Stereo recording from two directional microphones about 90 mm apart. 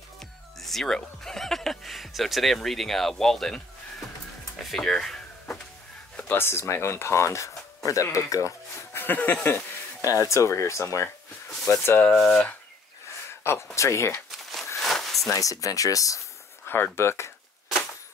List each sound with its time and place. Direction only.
0.2 s speech: 5° left (ahead or behind)
4.6 s a sound: 5° left (ahead or behind)
6.1 s speech: 20° left (ahead or behind)
9.0 s speech: 20° left (ahead or behind)
10.2 s speech: 35° left (ahead or behind)
12.0 s speech: 5° left (ahead or behind)
13.3 s a sound: 30° left (ahead or behind)
13.7 s speech: 35° left (ahead or behind)
14.3 s crumpling: centre (ahead or behind)
14.8 s a sound: 5° left (ahead or behind)
15.3 s speech: 40° left (ahead or behind)
16.6 s speech: 25° left (ahead or behind)